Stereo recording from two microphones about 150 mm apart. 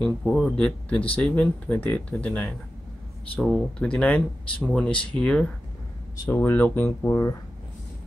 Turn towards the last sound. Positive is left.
turn(degrees=20)  # may be behind; listen again after turning